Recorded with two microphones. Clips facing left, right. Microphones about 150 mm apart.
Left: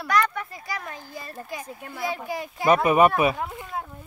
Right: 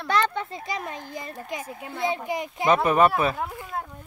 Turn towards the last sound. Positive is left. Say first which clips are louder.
# even
turn(degrees=0)  # may be behind; listen again after turning